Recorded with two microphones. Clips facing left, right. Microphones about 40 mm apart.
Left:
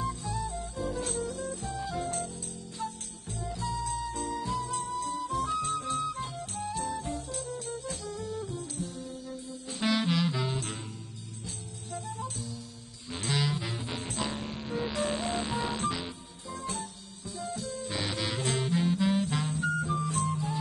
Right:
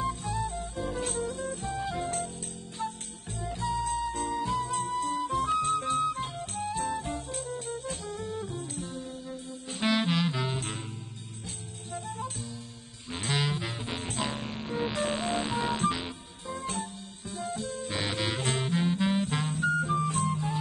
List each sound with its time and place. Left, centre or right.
0.0 s music: right